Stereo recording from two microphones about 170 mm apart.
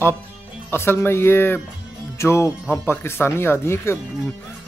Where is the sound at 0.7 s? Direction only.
15° left (ahead or behind).